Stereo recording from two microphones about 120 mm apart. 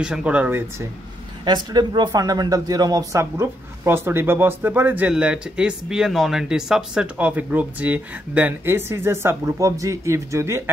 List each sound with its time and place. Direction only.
0.0 s speech: 10° right (ahead or behind)
1.4 s speech: 40° right (ahead or behind)